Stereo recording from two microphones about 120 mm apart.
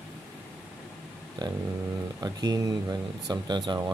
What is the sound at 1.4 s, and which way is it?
Speech, 35° right (ahead or behind).